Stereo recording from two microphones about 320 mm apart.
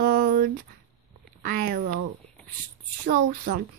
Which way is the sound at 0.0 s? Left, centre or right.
Right.